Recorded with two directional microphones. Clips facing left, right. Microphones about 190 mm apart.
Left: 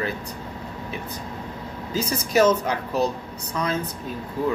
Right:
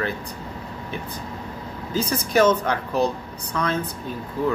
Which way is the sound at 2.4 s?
10° left (ahead or behind).